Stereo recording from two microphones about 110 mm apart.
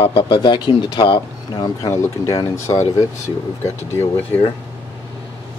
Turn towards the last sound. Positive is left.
turn(degrees=20)  # may be behind; listen again after turning